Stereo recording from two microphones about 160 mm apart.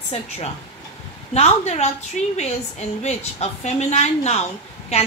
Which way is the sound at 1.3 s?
45° left (ahead or behind).